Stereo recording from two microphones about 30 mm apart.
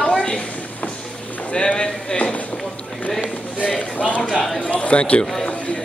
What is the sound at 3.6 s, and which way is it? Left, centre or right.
Speech, left.